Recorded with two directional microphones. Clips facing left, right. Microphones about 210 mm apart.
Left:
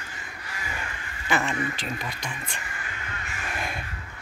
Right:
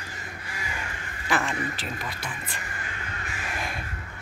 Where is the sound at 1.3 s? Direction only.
Centre (ahead or behind).